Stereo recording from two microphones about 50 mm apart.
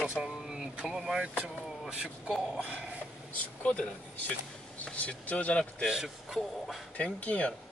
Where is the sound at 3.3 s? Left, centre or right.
Left.